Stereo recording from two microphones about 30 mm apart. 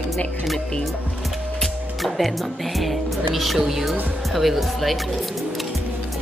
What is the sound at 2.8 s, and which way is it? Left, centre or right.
Speech, centre.